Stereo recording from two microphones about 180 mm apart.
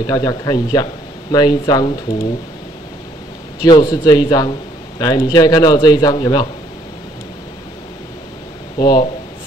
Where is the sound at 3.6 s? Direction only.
25° left (ahead or behind).